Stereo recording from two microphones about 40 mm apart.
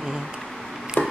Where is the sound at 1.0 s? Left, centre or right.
Left.